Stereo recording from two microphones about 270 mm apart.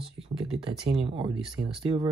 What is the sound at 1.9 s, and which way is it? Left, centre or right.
Speech, centre.